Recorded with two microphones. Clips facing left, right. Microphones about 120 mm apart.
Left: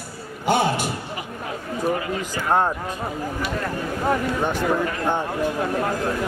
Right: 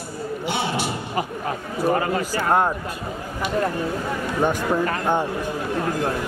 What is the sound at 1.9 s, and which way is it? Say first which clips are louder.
Speech: right 4 dB; 45° right (ahead or behind).